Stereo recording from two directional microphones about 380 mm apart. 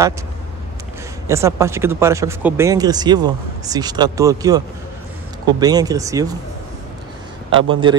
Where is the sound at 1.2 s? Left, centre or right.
Centre.